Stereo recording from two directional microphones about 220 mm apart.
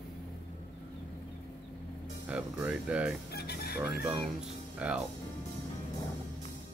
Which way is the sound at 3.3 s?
45° left (ahead or behind).